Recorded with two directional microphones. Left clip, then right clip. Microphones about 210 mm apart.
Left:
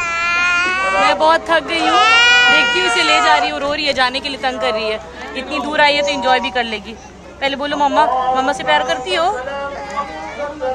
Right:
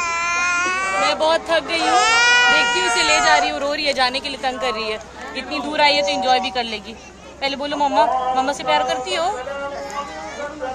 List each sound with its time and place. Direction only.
0.0 s baby cry: 10° right (ahead or behind)
1.0 s speech: centre (ahead or behind)
1.9 s baby cry: 15° right (ahead or behind)
2.5 s speech: centre (ahead or behind)